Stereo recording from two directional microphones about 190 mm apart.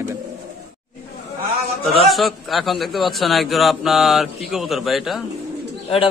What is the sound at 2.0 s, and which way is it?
A man's voice, centre (ahead or behind).